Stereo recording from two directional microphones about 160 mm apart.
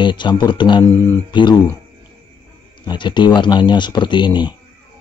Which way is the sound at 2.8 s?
30° left (ahead or behind).